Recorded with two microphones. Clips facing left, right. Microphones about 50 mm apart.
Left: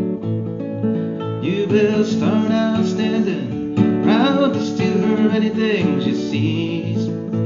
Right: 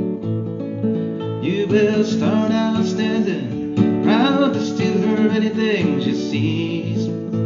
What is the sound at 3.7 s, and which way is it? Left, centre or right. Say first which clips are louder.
Music: left 1 dB; centre.